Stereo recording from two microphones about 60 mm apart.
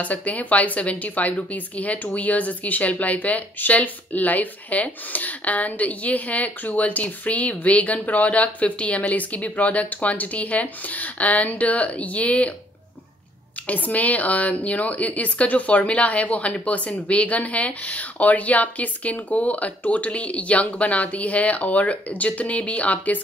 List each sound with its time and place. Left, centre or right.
0.0 s a woman's voice: left
13.7 s a woman's voice: left